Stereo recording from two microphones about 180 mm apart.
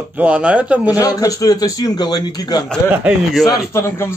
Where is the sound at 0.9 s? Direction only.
20° left (ahead or behind).